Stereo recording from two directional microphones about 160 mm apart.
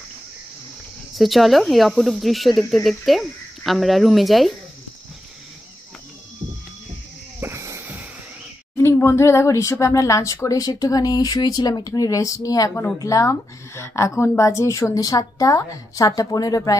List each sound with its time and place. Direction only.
1.1 s speech: centre (ahead or behind)
7.3 s a sound: 15° right (ahead or behind)
8.7 s speech: 15° left (ahead or behind)